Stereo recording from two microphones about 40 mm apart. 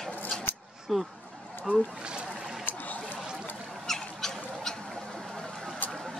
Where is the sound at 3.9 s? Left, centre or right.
Centre.